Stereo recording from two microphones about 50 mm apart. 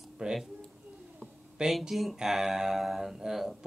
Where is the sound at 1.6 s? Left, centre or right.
Centre.